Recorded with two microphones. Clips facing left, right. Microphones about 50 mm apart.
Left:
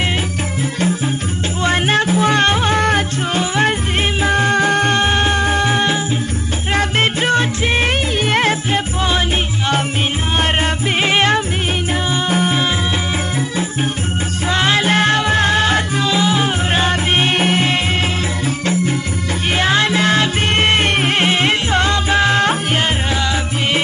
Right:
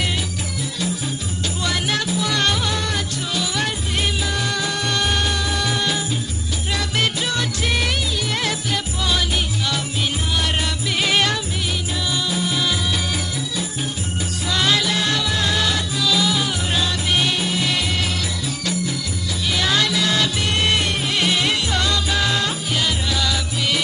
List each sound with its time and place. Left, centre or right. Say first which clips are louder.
1.6 s music: left 8 dB; left
11.0 s music: left 5 dB; left
14.5 s music: left 5 dB; left
19.5 s music: left 5 dB; left